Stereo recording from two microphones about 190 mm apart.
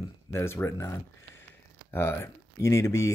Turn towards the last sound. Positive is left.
turn(degrees=15)  # may be behind; listen again after turning